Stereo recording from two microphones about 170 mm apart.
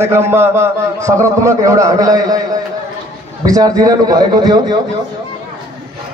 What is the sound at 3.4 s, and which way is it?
Music, 20° right (ahead or behind).